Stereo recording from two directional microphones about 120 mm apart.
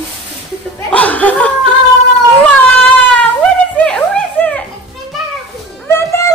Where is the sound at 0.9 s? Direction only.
10° left (ahead or behind).